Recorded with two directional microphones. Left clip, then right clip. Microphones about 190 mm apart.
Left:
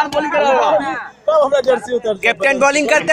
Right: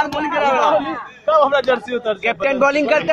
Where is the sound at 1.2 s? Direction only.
45° left (ahead or behind).